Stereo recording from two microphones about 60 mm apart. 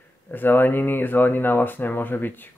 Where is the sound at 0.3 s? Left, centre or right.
Left.